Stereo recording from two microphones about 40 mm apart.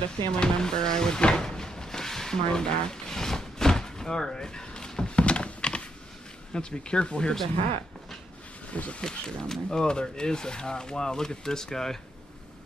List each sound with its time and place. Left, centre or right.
0.4 s a sound: centre
6.5 s speech: left
8.7 s speech: left
9.0 s speech: centre